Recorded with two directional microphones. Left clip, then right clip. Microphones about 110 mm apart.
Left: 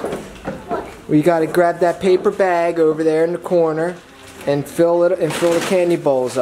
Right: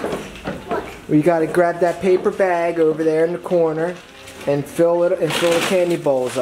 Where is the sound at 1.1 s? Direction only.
15° left (ahead or behind).